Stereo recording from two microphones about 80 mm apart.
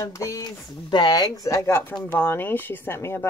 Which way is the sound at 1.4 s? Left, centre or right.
Left.